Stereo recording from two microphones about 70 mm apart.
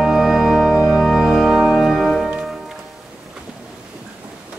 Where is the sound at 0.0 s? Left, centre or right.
Centre.